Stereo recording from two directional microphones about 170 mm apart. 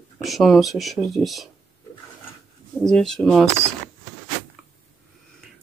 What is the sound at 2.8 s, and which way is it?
Speech, 5° left (ahead or behind).